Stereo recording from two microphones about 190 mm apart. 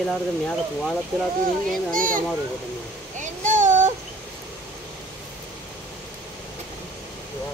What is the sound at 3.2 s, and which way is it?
Child singing, 40° right (ahead or behind).